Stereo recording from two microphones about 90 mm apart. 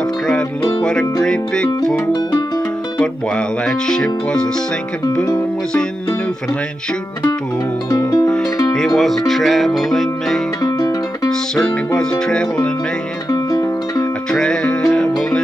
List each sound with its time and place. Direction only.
1.2 s music: 10° left (ahead or behind)
3.0 s music: 10° left (ahead or behind)
8.7 s speech: centre (ahead or behind)
9.3 s music: centre (ahead or behind)
10.6 s music: 45° left (ahead or behind)
11.2 s music: 5° left (ahead or behind)
13.3 s music: 40° left (ahead or behind)
14.3 s music: 10° left (ahead or behind)